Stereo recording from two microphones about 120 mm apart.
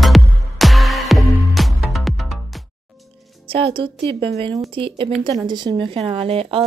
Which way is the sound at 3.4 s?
50° right (ahead or behind).